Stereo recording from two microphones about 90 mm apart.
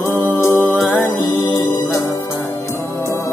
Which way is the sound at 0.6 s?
Centre (ahead or behind).